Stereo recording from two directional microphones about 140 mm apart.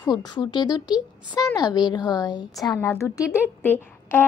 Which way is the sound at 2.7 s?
20° left (ahead or behind).